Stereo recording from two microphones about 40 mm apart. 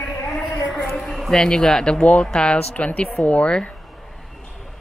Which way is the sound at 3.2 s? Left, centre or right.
Left.